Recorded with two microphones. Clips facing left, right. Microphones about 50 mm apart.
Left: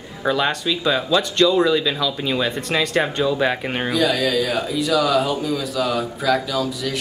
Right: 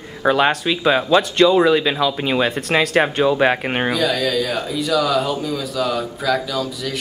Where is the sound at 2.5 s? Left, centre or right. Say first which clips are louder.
Right 2 dB; centre.